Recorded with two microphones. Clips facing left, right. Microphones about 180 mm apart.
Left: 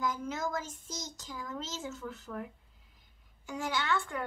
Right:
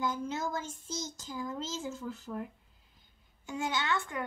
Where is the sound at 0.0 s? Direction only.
30° right (ahead or behind).